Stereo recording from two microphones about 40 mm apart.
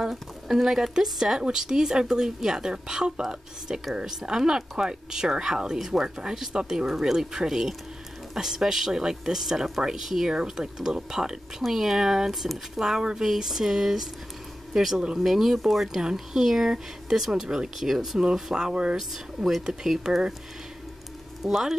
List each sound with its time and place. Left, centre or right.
0.0 s speech: centre
10.3 s speech: centre
11.6 s speech: centre
18.9 s speech: centre
19.6 s speech: right
21.4 s speech: centre